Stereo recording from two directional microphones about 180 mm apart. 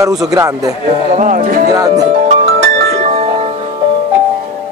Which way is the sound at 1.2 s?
50° right (ahead or behind).